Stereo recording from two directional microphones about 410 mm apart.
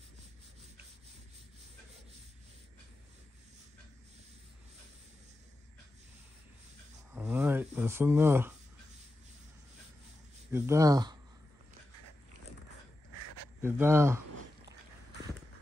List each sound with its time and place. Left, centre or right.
7.2 s a sound: centre
10.5 s speech: centre
13.6 s speech: centre